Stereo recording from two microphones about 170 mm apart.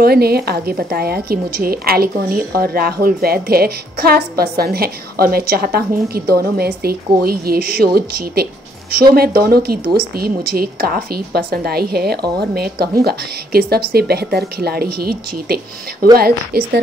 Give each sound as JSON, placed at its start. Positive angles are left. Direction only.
{"t": 0.0, "sound": "a woman's voice", "side_deg": -65}